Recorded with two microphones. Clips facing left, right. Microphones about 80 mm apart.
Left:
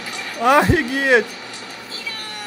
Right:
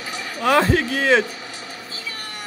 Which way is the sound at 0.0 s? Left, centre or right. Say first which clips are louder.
Even; right.